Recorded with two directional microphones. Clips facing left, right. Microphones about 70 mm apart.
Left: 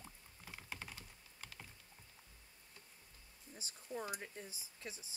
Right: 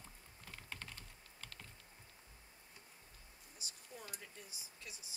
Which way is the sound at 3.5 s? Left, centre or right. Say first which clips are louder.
Left 9 dB; left.